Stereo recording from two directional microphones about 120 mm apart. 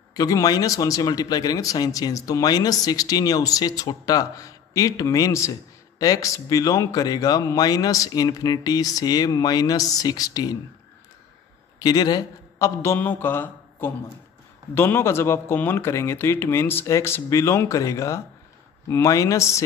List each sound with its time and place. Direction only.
0.1 s a man's voice: 30° left (ahead or behind)
11.8 s a man's voice: 35° left (ahead or behind)